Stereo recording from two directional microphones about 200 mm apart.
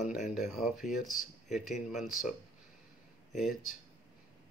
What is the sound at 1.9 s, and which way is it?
Speech, centre (ahead or behind).